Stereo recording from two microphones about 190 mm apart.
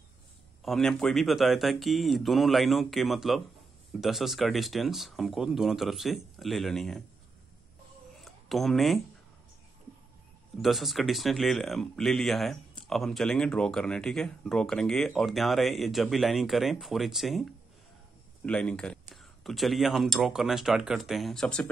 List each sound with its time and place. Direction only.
0.6 s speech: centre (ahead or behind)
8.2 s a sound: centre (ahead or behind)
10.6 s speech: centre (ahead or behind)